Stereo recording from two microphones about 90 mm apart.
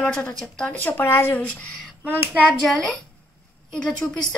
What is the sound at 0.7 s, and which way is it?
Speech, 20° left (ahead or behind).